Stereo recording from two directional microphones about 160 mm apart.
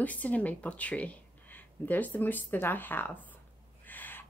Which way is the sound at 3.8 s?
10° left (ahead or behind).